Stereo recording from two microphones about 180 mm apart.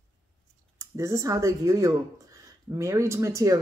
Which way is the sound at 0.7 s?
15° right (ahead or behind).